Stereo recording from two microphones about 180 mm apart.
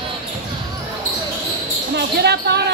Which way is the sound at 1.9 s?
65° right (ahead or behind).